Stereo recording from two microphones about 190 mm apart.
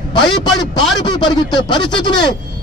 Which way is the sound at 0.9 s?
20° left (ahead or behind).